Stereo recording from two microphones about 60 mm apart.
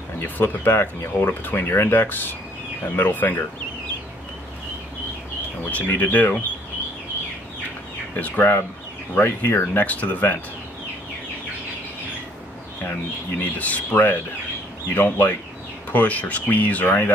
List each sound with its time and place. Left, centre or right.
0.2 s speech: left
5.6 s speech: left
8.2 s speech: left
13.4 s speech: left